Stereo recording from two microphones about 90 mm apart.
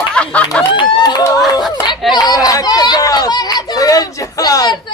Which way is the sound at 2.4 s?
40° left (ahead or behind).